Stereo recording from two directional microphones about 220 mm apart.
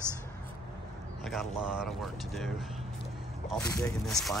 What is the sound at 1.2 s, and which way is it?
Speech, centre (ahead or behind).